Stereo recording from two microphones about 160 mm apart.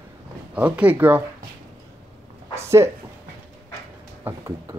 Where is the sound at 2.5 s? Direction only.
15° right (ahead or behind).